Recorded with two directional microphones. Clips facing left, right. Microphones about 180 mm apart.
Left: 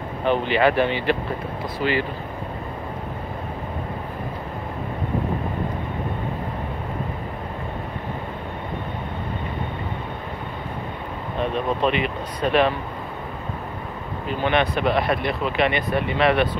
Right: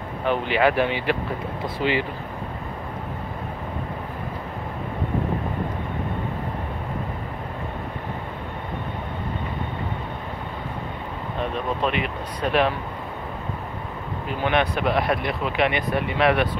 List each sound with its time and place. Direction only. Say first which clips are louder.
0.2 s speech: left 2 dB; 5° right (ahead or behind)
11.8 s speech: left 3 dB; 5° right (ahead or behind)
14.4 s speech: left 1 dB; 10° right (ahead or behind)